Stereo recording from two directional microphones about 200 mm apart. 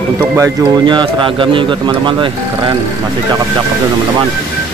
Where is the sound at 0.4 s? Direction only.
25° right (ahead or behind).